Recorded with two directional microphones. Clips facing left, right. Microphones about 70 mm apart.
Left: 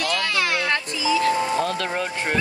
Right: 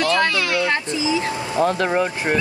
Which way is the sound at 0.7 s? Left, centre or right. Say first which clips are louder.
Right 2 dB; right.